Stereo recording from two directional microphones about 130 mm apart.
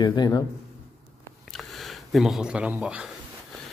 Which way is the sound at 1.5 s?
Centre (ahead or behind).